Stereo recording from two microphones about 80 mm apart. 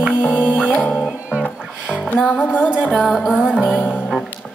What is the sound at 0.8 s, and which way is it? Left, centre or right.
Music, centre.